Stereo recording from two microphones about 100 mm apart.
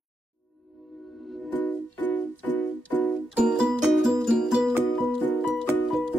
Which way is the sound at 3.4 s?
5° right (ahead or behind).